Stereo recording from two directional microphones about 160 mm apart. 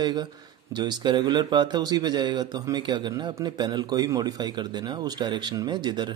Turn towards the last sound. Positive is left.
turn(degrees=-30)  # may be behind; listen again after turning